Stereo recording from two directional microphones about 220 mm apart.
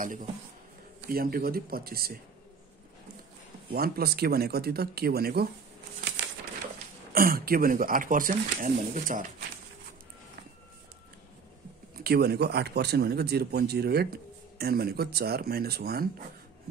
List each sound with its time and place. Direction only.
1.0 s speech: 40° right (ahead or behind)
3.7 s speech: 45° right (ahead or behind)
7.1 s speech: 40° right (ahead or behind)
12.0 s speech: 45° right (ahead or behind)